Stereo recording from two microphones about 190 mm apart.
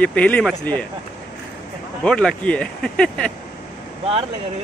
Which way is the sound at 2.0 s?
5° left (ahead or behind).